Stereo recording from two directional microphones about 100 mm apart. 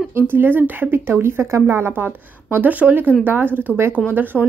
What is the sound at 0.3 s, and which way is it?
A woman's voice, 20° right (ahead or behind).